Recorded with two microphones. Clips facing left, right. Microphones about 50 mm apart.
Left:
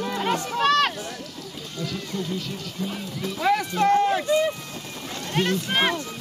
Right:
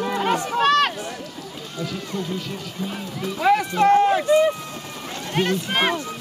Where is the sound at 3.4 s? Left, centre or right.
Right.